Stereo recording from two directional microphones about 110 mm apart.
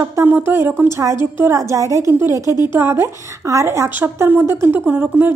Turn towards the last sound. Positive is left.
turn(degrees=-20)  # may be behind; listen again after turning